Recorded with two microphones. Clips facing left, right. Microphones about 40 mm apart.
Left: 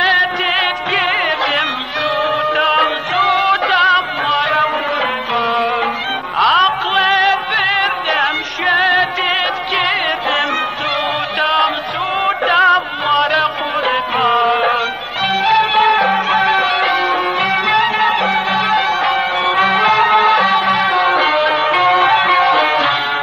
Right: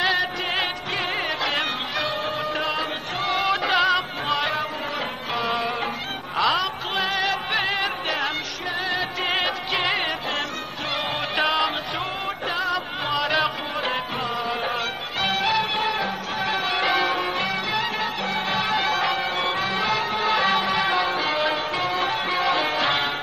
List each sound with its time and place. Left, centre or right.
0.0 s music: left
2.5 s music: left
3.3 s music: left
8.6 s music: left
12.3 s music: left
15.2 s music: left
15.8 s music: left
16.1 s music: left
16.4 s music: left